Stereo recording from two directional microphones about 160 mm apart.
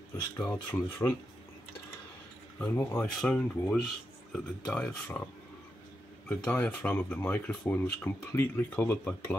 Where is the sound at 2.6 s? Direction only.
10° left (ahead or behind).